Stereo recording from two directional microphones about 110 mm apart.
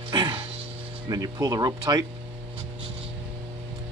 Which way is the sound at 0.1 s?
40° right (ahead or behind).